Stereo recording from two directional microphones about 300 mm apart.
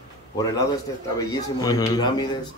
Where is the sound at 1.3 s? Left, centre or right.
Centre.